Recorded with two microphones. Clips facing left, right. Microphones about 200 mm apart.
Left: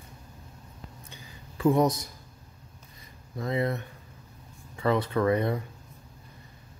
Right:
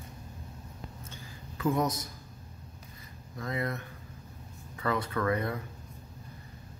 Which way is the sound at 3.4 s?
25° left (ahead or behind).